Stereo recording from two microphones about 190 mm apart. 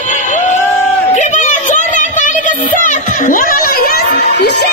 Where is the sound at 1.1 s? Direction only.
40° left (ahead or behind).